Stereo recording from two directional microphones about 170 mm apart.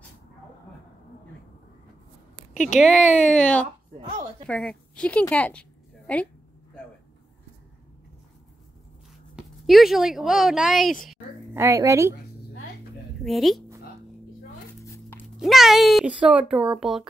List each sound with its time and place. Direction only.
2.5 s speech: 45° left (ahead or behind)
2.8 s a child's voice: centre (ahead or behind)
5.3 s a sound: 5° left (ahead or behind)
9.3 s speech: centre (ahead or behind)
11.5 s speech: 15° right (ahead or behind)
13.2 s speech: centre (ahead or behind)
14.9 s dog: 15° left (ahead or behind)
15.2 s a child's voice: centre (ahead or behind)